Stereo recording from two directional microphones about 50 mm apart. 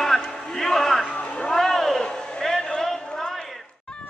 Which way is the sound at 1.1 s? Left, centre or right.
Left.